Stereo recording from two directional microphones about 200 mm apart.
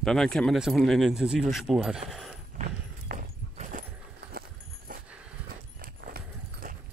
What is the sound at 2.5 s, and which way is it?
Horse, 40° right (ahead or behind).